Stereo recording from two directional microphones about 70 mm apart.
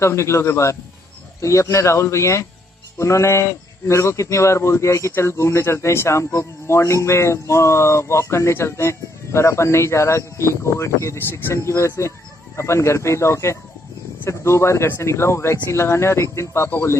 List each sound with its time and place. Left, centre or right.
0.0 s a man's voice: left
11.1 s a man's voice: left